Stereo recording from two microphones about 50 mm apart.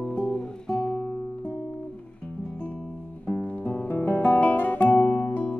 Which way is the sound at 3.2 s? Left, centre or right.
Left.